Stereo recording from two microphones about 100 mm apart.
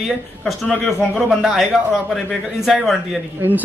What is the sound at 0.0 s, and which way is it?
A man's voice, 5° left (ahead or behind).